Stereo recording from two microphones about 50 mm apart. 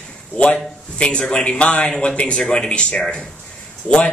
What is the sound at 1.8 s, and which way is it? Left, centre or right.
A man's voice, centre.